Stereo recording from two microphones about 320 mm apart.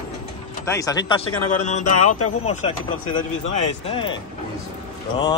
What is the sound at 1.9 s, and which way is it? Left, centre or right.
Speech, left.